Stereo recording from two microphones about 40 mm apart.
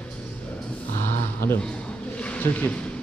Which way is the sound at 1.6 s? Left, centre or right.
Left.